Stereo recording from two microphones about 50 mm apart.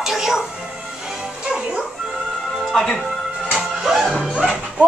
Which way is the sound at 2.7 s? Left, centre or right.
Centre.